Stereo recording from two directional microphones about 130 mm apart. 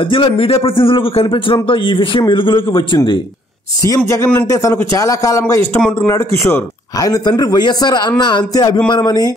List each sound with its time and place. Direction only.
0.0 s a man's voice: 40° left (ahead or behind)
3.8 s a man's voice: 25° left (ahead or behind)
5.8 s speech: 5° left (ahead or behind)
6.0 s a man's voice: 20° left (ahead or behind)